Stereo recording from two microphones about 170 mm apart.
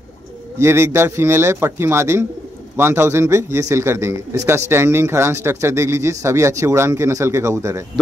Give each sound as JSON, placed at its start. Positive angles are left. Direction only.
{"t": 0.6, "sound": "a man's voice", "side_deg": -15}